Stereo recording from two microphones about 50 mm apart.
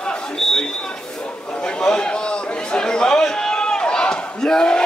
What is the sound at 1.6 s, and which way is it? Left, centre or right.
Chatter, centre.